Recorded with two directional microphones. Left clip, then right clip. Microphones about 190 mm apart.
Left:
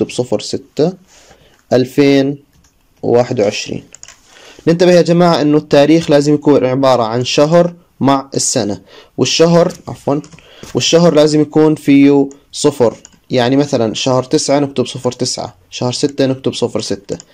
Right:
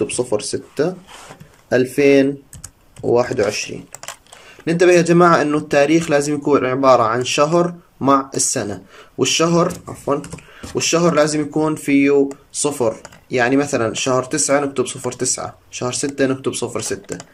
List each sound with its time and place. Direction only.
0.0 s speech: 25° left (ahead or behind)